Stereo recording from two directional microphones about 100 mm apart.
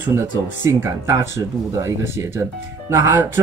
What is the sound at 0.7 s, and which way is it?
Speech, 30° right (ahead or behind).